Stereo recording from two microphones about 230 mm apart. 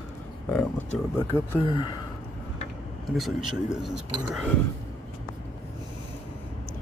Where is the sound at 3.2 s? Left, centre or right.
Centre.